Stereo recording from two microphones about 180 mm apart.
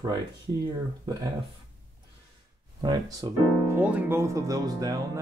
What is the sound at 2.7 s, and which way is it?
Speech, 20° right (ahead or behind).